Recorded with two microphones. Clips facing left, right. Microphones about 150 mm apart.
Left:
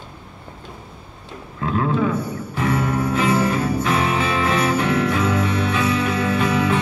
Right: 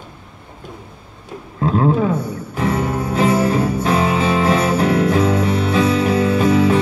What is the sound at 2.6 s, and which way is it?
Jingle bell, 35° right (ahead or behind).